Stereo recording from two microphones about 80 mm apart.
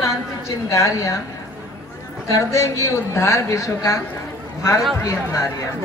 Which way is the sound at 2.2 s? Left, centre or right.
Left.